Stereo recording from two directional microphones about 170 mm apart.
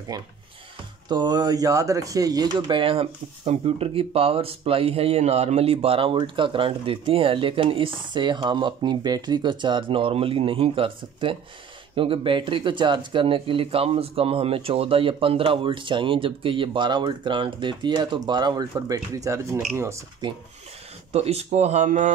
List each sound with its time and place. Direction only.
0.1 s speech: 25° right (ahead or behind)
21.1 s speech: 40° right (ahead or behind)